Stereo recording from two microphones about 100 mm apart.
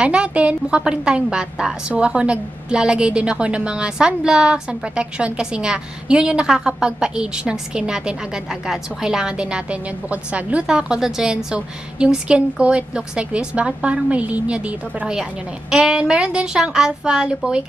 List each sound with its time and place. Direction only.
0.0 s a woman's voice: 10° right (ahead or behind)